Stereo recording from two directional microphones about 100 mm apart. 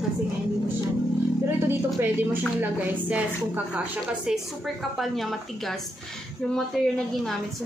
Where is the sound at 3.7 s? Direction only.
5° right (ahead or behind).